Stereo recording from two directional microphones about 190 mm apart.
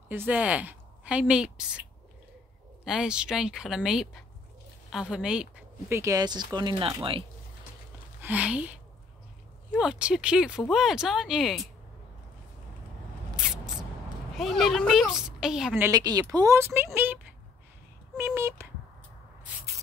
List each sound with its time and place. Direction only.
0.1 s a woman's voice: 10° right (ahead or behind); by 7.2 s 30° right (ahead or behind)
8.2 s speech: 10° right (ahead or behind)
9.8 s a woman's voice: 5° right (ahead or behind)
13.4 s spray: 5° right (ahead or behind)
14.3 s a woman's voice: centre (ahead or behind)
15.9 s speech: 20° right (ahead or behind)